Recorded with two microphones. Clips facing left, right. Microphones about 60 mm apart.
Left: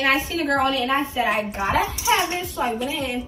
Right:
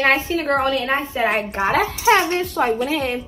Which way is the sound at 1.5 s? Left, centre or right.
Right.